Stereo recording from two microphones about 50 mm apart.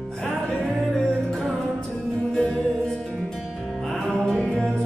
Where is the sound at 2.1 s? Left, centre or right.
Centre.